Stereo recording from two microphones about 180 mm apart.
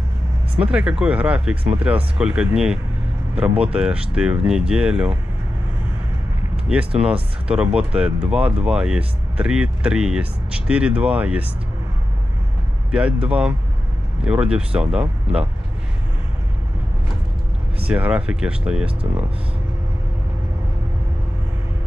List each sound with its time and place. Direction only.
0.6 s speech: 5° right (ahead or behind)
6.7 s speech: 5° right (ahead or behind)
12.9 s speech: 5° right (ahead or behind)
17.8 s speech: 5° right (ahead or behind)